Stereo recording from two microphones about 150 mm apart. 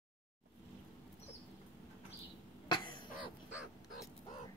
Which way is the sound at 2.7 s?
30° left (ahead or behind).